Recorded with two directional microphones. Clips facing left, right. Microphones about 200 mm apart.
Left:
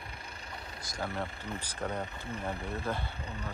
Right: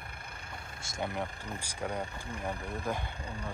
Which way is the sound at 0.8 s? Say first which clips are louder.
Right 2 dB; 25° right (ahead or behind).